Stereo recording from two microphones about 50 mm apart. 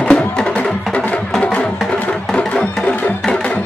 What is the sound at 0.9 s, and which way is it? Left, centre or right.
Music, left.